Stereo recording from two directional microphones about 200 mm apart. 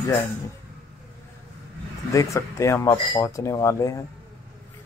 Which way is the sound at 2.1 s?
15° left (ahead or behind).